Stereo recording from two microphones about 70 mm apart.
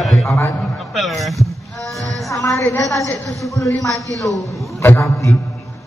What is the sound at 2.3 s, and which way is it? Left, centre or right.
Music, left.